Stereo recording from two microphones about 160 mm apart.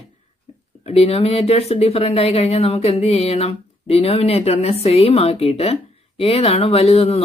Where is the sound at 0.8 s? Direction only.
40° left (ahead or behind).